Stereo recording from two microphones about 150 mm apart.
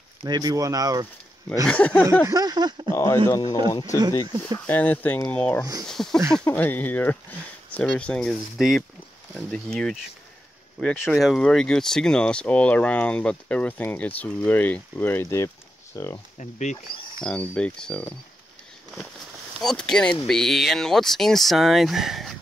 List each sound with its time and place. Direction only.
0.2 s speech: 25° right (ahead or behind)
1.7 s speech: 10° left (ahead or behind)
2.2 s speech: 25° right (ahead or behind)
2.9 s speech: 20° left (ahead or behind)
4.6 s speech: 10° left (ahead or behind)
16.3 s speech: 50° left (ahead or behind)
17.2 s speech: 5° left (ahead or behind)
19.6 s speech: 5° left (ahead or behind)